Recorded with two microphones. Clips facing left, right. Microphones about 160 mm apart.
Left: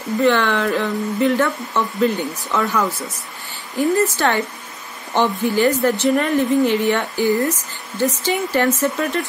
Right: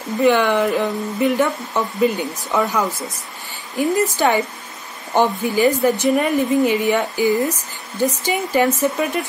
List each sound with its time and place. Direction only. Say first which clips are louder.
0.2 s a woman's voice: right 2 dB; 15° right (ahead or behind)